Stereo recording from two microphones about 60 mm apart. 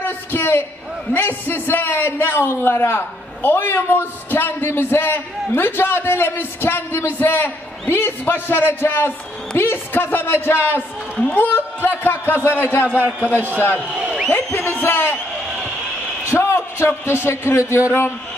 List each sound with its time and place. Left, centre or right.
0.0 s a sound: left
1.1 s a man's voice: left
13.0 s a man's voice: right
13.6 s a man's voice: left
13.8 s a sound: centre
14.3 s a man's voice: left
16.3 s a man's voice: left